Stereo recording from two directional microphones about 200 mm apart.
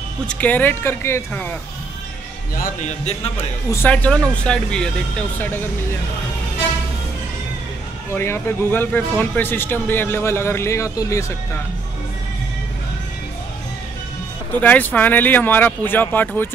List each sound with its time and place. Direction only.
0.3 s a man's voice: 10° left (ahead or behind)
2.5 s speech: 45° left (ahead or behind)
3.7 s speech: 10° left (ahead or behind)
8.1 s a man's voice: 15° left (ahead or behind)
14.6 s a man's voice: 10° left (ahead or behind)